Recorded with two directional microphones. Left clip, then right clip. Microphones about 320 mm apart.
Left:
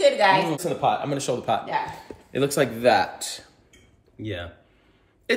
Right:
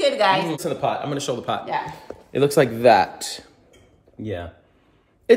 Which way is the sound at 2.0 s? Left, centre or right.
Centre.